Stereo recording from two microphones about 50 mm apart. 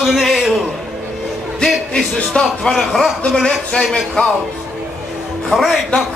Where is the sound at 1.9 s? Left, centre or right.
Left.